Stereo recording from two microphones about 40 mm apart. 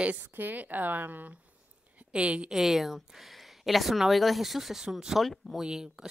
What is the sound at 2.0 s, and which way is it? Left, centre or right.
Speech, right.